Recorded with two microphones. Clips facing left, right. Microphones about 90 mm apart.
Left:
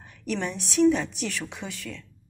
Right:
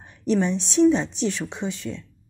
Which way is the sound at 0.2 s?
25° right (ahead or behind).